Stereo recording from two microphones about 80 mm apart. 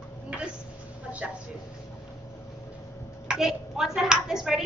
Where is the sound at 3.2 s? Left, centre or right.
Centre.